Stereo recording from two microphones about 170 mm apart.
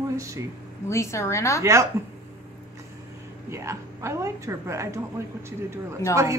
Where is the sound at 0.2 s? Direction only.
20° right (ahead or behind).